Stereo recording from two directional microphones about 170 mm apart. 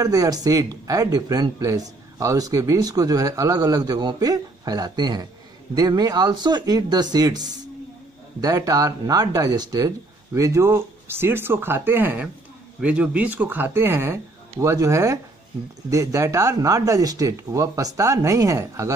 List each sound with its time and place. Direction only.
0.0 s speech: 20° right (ahead or behind)